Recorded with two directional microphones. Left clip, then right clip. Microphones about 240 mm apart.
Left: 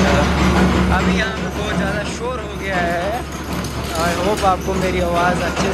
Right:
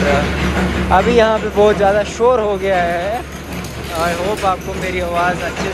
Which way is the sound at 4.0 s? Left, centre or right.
Centre.